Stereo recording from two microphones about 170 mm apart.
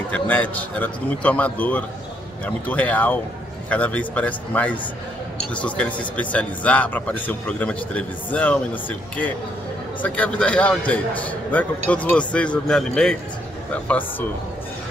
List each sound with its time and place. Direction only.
0.1 s a man's voice: 10° left (ahead or behind)